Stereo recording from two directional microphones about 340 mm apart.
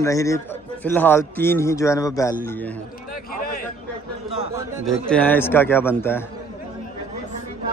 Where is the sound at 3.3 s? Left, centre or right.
Left.